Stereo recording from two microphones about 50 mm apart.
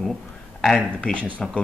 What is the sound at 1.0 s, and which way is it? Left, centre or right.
Speech, left.